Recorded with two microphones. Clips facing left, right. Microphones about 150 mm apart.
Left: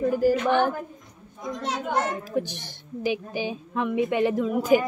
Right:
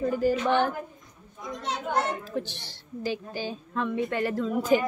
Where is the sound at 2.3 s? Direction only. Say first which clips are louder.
Left 5 dB; 15° left (ahead or behind).